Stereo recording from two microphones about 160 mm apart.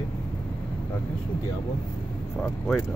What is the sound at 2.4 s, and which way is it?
Speech, centre (ahead or behind).